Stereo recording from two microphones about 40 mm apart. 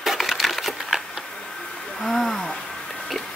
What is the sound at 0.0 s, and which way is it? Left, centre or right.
Splinter, centre.